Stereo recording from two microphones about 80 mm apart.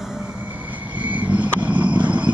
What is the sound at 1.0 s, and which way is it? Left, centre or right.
Vehicle, centre.